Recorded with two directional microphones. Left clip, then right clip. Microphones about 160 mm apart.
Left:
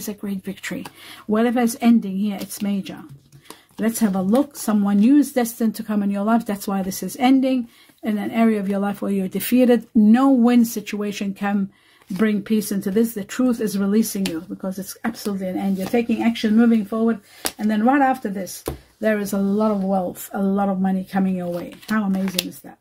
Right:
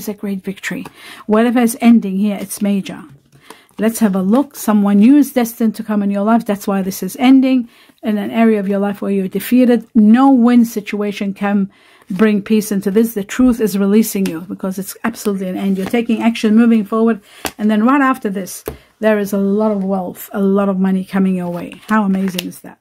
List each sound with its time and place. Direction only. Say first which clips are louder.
0.0 s speech: right 7 dB; 30° right (ahead or behind)
20.3 s speech: right 7 dB; 45° right (ahead or behind)